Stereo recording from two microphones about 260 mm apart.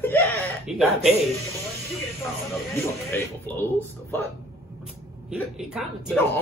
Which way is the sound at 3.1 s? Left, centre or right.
Centre.